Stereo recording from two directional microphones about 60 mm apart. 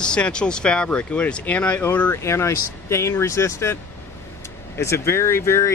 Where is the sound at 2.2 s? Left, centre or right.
Left.